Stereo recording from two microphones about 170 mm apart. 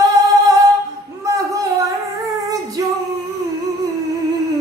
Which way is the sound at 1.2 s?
20° right (ahead or behind).